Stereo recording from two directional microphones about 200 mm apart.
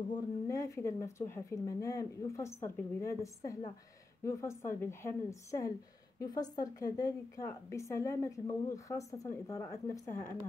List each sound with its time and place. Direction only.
0.1 s a woman's voice: 15° left (ahead or behind)